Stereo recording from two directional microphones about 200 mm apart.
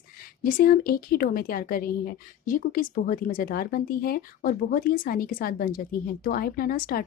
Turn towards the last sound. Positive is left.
turn(degrees=45)  # may be behind; listen again after turning